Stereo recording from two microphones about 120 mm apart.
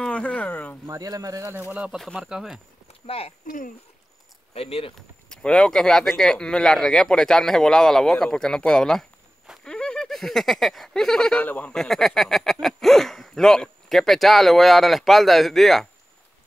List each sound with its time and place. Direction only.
0.0 s speech: 10° left (ahead or behind)
0.8 s speech: 30° right (ahead or behind)
1.8 s speech: 5° right (ahead or behind)
3.1 s speech: 55° left (ahead or behind)
4.6 s speech: 55° left (ahead or behind)
5.3 s speech: 5° left (ahead or behind)